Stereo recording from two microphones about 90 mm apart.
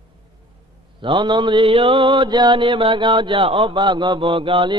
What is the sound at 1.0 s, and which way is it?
Mantra, 65° right (ahead or behind).